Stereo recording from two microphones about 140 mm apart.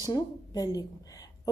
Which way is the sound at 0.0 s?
25° left (ahead or behind).